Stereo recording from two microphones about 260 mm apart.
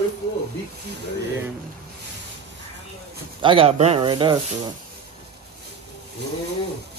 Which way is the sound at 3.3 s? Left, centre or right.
Centre.